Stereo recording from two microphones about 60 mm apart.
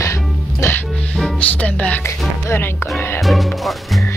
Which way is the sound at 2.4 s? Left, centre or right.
Left.